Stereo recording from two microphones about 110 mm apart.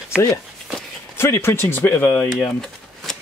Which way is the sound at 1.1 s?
25° left (ahead or behind).